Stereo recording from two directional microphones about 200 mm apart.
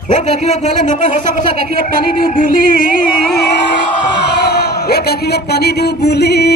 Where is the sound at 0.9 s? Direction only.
35° left (ahead or behind).